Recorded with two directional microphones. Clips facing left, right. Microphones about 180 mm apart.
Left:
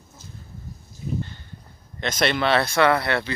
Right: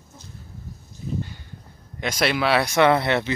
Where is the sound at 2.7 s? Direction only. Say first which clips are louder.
Right 2 dB; 20° right (ahead or behind).